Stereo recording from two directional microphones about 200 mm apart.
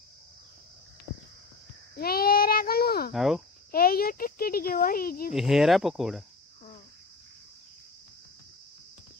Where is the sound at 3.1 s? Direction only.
Centre (ahead or behind).